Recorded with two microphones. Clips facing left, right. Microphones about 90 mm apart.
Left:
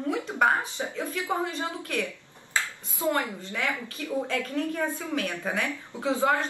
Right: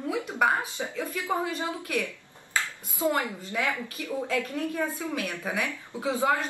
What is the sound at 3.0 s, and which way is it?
A woman's voice, 15° right (ahead or behind).